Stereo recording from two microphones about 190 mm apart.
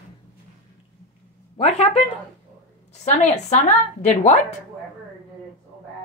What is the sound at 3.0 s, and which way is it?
Speech, 40° left (ahead or behind).